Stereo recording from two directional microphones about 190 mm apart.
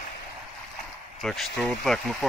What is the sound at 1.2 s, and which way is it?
Speech, centre (ahead or behind).